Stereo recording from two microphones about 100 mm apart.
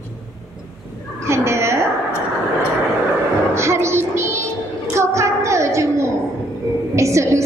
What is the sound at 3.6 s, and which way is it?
Music, 25° right (ahead or behind).